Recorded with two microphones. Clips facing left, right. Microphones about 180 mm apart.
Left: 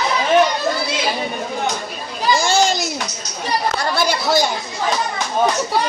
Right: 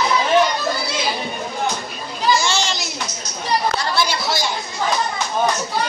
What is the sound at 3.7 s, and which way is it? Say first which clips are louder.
Speech: left 2 dB; 50° left (ahead or behind).